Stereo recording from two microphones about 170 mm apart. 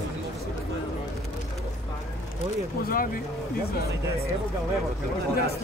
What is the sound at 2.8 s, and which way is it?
Speech, 55° left (ahead or behind).